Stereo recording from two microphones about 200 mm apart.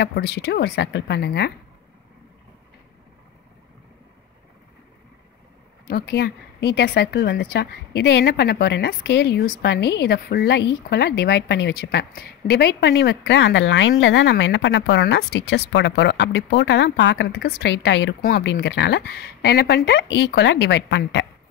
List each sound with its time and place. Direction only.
0.0 s a woman's voice: 55° left (ahead or behind)
5.9 s a woman's voice: 55° left (ahead or behind)